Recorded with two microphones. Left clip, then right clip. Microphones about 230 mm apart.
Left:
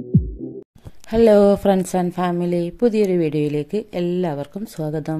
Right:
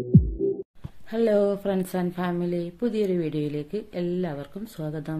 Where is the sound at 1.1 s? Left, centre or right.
Left.